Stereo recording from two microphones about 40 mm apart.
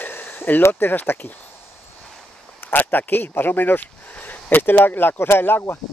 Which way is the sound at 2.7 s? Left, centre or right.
Left.